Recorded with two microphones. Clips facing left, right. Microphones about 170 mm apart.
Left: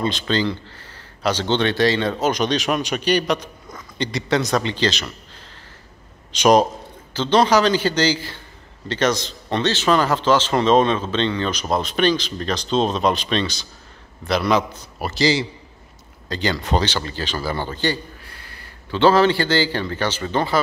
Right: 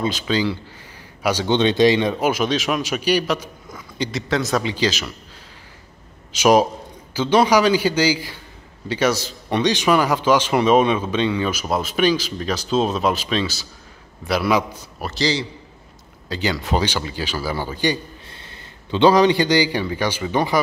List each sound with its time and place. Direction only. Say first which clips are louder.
0.0 s speech: even; 10° right (ahead or behind)
6.3 s speech: even; 5° right (ahead or behind)
15.0 s a man's voice: left 3 dB; 5° left (ahead or behind)
16.3 s speech: even; 10° right (ahead or behind)
18.2 s a man's voice: right 1 dB; 25° right (ahead or behind)